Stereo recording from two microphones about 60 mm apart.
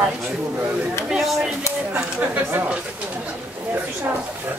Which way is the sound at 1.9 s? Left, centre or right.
Right.